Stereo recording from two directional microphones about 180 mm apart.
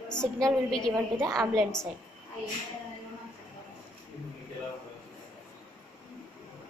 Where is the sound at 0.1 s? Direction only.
5° left (ahead or behind).